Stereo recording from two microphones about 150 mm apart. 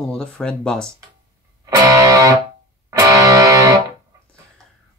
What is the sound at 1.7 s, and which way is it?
Music, 20° right (ahead or behind).